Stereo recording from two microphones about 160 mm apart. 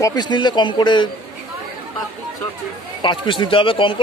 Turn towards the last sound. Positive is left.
turn(degrees=35)  # may be behind; listen again after turning